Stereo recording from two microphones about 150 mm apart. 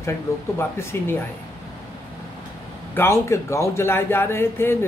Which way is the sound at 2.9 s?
20° left (ahead or behind).